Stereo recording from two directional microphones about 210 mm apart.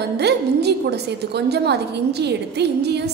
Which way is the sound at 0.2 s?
50° right (ahead or behind).